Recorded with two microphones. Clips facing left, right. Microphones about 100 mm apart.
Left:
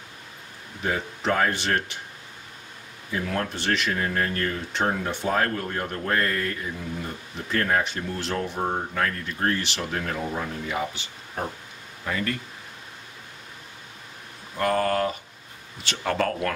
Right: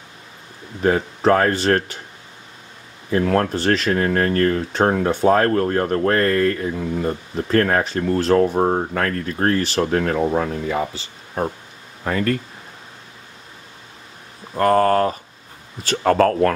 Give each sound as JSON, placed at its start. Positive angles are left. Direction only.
{"t": 0.8, "sound": "speech", "side_deg": -50}
{"t": 3.1, "sound": "speech", "side_deg": -55}
{"t": 4.0, "sound": "speech", "side_deg": -50}
{"t": 8.2, "sound": "speech", "side_deg": -40}
{"t": 10.7, "sound": "speech", "side_deg": -35}
{"t": 12.0, "sound": "speech", "side_deg": -45}
{"t": 14.5, "sound": "speech", "side_deg": -45}